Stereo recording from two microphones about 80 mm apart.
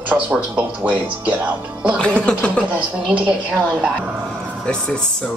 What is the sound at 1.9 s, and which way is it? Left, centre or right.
Speech, centre.